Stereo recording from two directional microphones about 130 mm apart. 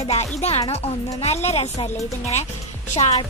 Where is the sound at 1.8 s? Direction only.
25° left (ahead or behind).